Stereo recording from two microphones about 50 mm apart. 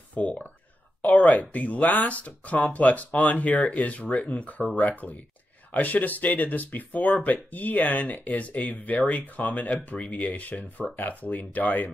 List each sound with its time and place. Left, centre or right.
0.1 s speech: left